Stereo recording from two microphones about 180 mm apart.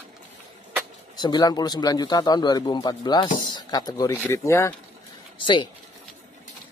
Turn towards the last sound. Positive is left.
turn(degrees=25)  # may be behind; listen again after turning